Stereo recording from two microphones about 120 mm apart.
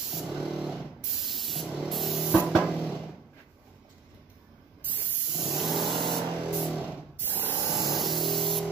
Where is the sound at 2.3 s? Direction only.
5° right (ahead or behind).